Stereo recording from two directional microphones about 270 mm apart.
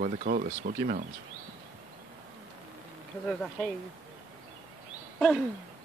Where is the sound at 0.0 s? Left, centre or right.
Right.